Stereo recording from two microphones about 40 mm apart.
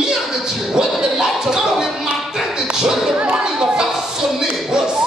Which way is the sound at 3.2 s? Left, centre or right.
Right.